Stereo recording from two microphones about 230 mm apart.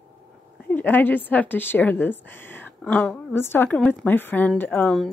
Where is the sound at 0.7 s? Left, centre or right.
Centre.